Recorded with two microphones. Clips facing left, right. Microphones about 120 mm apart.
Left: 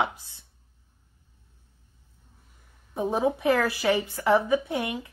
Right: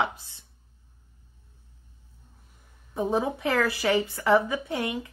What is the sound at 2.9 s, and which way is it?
A woman's voice, 15° left (ahead or behind).